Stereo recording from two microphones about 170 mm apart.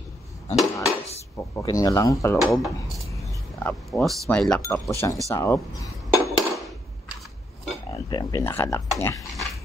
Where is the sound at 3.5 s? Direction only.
5° left (ahead or behind).